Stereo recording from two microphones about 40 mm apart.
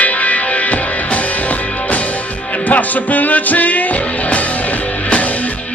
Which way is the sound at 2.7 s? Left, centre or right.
Left.